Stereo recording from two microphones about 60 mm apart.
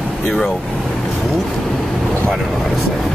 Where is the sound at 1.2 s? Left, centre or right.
Centre.